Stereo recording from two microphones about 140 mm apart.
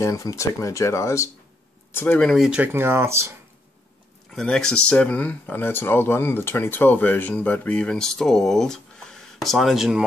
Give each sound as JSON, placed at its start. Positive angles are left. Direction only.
{"t": 0.0, "sound": "speech", "side_deg": 20}
{"t": 2.0, "sound": "speech", "side_deg": 10}
{"t": 4.3, "sound": "speech", "side_deg": 5}